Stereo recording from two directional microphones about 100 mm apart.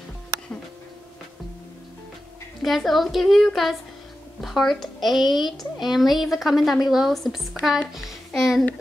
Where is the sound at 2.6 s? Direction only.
Centre (ahead or behind).